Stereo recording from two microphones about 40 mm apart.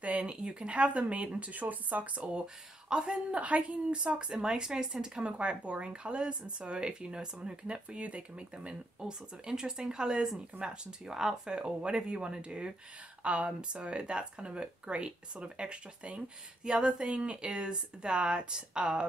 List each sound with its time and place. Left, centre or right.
0.0 s speech: right
2.2 s speech: right
4.3 s speech: centre
9.0 s speech: centre